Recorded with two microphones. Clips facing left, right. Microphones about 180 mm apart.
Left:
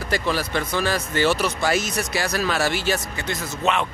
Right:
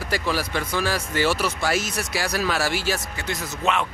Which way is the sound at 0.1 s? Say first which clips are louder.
Left 2 dB; 10° right (ahead or behind).